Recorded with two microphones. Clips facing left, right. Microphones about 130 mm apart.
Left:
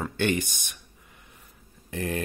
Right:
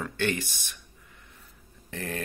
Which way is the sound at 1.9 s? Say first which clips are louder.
Left 4 dB; 15° left (ahead or behind).